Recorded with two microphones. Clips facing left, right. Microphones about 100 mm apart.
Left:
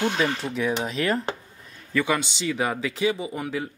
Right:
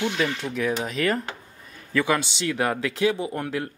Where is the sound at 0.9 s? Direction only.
Centre (ahead or behind).